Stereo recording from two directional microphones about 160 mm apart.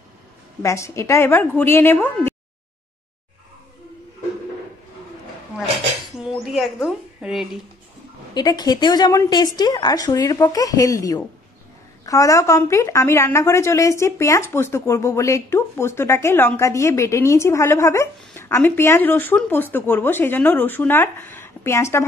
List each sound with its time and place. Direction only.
0.6 s a woman's voice: 20° left (ahead or behind)
6.2 s a woman's voice: centre (ahead or behind)
8.4 s a woman's voice: 25° left (ahead or behind)